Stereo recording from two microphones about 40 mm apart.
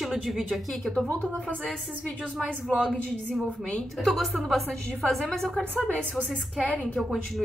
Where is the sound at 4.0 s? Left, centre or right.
Centre.